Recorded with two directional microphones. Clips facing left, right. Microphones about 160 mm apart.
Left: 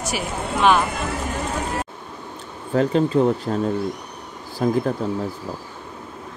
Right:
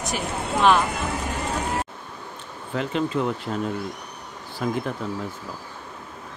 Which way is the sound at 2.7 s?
40° left (ahead or behind).